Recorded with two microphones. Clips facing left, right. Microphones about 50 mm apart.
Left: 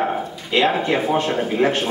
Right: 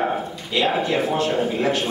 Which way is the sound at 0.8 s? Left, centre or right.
Left.